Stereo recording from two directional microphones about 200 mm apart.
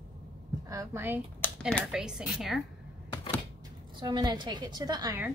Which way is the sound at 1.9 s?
5° right (ahead or behind).